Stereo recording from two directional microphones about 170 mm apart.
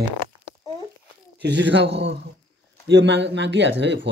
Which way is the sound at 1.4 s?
90° right.